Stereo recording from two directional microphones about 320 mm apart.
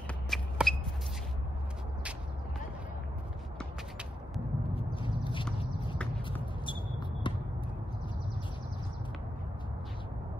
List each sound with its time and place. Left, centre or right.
0.3 s shuffle: centre
4.7 s horse: centre
6.6 s basketball bounce: centre